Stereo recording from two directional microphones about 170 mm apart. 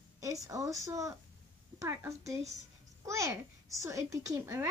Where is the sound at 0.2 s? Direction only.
20° right (ahead or behind).